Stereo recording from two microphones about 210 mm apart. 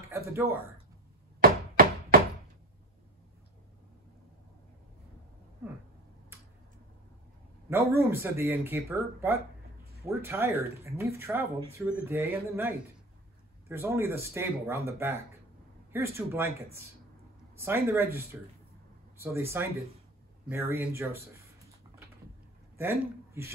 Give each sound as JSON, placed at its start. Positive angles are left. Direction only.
{"t": 0.1, "sound": "speech", "side_deg": -10}
{"t": 1.4, "sound": "chopping", "side_deg": -45}
{"t": 7.7, "sound": "speech", "side_deg": -10}
{"t": 17.6, "sound": "speech", "side_deg": -10}
{"t": 22.8, "sound": "a man's voice", "side_deg": -10}